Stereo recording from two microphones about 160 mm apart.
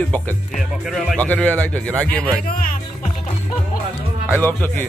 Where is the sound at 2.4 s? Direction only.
55° left (ahead or behind).